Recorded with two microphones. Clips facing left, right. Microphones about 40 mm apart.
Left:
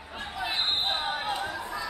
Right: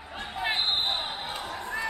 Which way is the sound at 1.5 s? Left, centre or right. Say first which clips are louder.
Right 1 dB; right.